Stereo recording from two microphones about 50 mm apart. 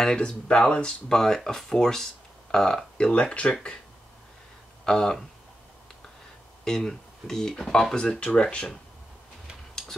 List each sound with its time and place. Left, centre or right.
0.0 s speech: centre
4.8 s speech: centre
6.6 s speech: centre
7.9 s speech: centre